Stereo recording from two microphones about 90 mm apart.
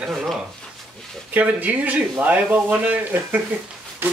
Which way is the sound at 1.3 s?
20° right (ahead or behind).